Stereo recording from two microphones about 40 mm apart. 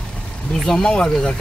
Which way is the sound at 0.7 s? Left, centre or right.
Centre.